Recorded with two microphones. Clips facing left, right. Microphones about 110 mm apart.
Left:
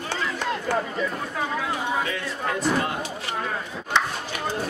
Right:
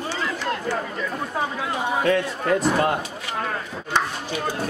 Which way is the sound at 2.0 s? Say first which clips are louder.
Right 8 dB; 50° right (ahead or behind).